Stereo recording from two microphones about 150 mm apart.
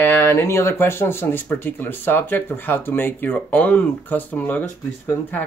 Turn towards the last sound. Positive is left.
turn(degrees=10)  # may be behind; listen again after turning